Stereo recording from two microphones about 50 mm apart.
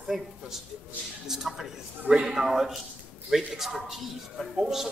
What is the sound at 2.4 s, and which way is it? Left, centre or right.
A man's voice, centre.